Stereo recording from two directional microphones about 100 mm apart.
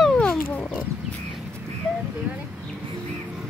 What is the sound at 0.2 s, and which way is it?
Wild animals, 10° left (ahead or behind).